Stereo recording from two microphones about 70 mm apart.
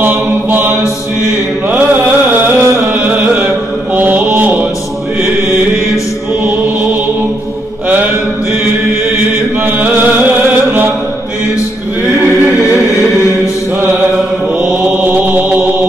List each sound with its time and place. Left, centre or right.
0.0 s mantra: right
1.7 s a sound: right
6.4 s music: right
9.6 s chant: right
14.6 s mantra: centre